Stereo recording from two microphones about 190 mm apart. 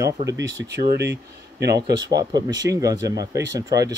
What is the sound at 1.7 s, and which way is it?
Speech, 20° right (ahead or behind).